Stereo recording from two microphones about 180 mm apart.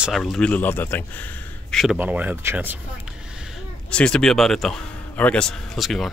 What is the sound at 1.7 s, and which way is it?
A man's voice, centre (ahead or behind).